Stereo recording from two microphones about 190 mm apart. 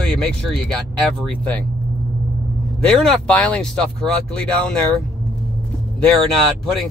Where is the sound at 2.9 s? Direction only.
Centre (ahead or behind).